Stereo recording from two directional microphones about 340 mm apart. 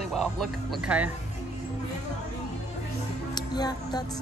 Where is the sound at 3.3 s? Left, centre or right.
Centre.